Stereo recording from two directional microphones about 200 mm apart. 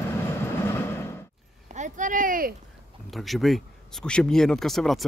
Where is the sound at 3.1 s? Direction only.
Centre (ahead or behind).